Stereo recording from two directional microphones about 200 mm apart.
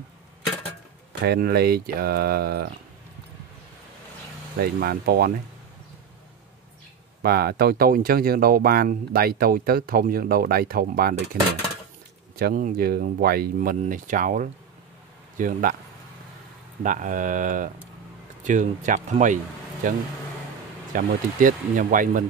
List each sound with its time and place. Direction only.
1.2 s speech: 50° right (ahead or behind)
4.6 s speech: 50° right (ahead or behind)
7.2 s speech: 50° right (ahead or behind)
12.4 s speech: 45° right (ahead or behind)
16.8 s speech: 40° right (ahead or behind)
20.9 s speech: 45° right (ahead or behind)